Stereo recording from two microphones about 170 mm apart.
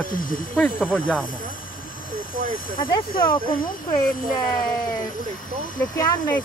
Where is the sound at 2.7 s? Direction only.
30° left (ahead or behind).